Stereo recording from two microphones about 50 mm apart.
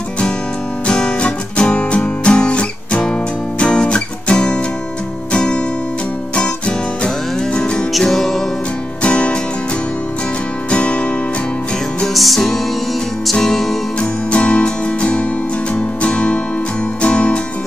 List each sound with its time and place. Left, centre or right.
0.8 s music: centre
8.0 s music: centre
9.0 s music: left
10.7 s music: left
12.1 s music: centre
13.9 s music: left